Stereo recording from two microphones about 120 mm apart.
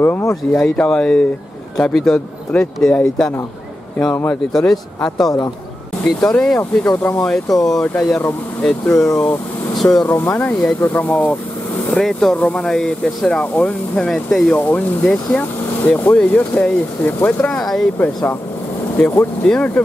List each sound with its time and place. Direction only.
0.0 s speech: 25° left (ahead or behind)
0.5 s speech: 10° left (ahead or behind)
4.5 s speech: 5° left (ahead or behind)
10.0 s speech: 20° left (ahead or behind)